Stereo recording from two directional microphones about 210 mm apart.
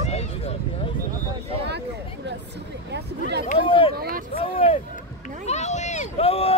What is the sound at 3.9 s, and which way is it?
Speech, 45° right (ahead or behind).